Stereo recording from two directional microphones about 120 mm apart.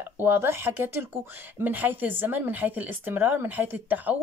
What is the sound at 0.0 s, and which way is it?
Speech, 15° right (ahead or behind).